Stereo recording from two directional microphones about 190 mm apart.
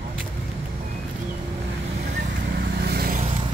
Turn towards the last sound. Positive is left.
turn(degrees=-50)  # may be behind; listen again after turning